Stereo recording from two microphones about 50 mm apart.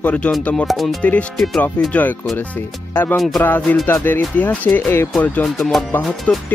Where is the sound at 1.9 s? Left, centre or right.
Left.